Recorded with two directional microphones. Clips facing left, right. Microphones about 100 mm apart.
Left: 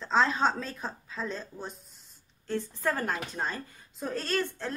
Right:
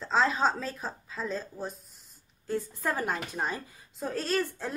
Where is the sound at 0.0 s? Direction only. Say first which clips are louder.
Even; centre (ahead or behind).